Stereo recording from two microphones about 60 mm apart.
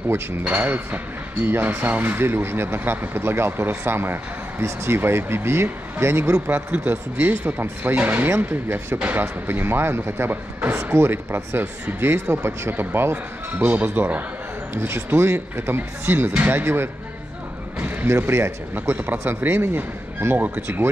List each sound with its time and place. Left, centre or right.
0.5 s speech: right
6.4 s speech: right
17.7 s basketball bounce: right
18.1 s speech: right
20.3 s speech: right